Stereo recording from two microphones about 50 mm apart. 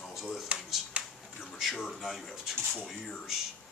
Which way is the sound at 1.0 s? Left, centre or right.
Right.